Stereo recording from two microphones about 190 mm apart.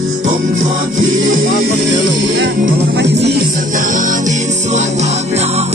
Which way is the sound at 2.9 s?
65° right (ahead or behind).